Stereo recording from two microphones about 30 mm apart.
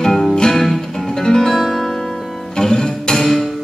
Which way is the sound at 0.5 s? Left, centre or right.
Centre.